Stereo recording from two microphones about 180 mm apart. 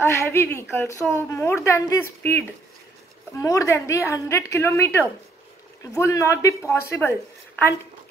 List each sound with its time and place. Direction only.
0.0 s a woman's voice: 15° left (ahead or behind)